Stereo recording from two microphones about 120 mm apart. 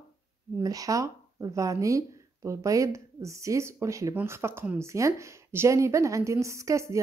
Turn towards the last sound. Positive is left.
turn(degrees=-25)  # may be behind; listen again after turning